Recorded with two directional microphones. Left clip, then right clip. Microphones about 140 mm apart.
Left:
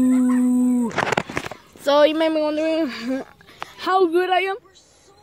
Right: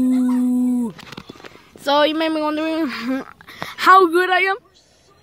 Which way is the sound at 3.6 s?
40° right (ahead or behind).